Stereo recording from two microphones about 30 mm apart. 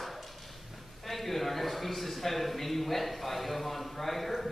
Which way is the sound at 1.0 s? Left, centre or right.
Centre.